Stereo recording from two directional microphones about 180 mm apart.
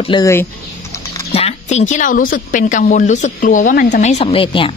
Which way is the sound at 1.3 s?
35° left (ahead or behind).